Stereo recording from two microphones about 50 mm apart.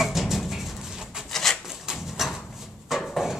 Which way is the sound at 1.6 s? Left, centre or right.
Centre.